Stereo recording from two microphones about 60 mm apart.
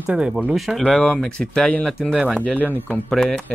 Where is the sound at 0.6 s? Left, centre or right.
Centre.